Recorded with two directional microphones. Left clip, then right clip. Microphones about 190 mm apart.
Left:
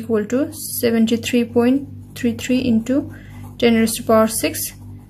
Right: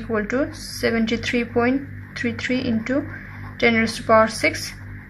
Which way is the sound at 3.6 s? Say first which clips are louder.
Left 2 dB; 50° left (ahead or behind).